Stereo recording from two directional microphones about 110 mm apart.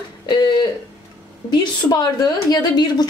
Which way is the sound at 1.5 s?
40° left (ahead or behind).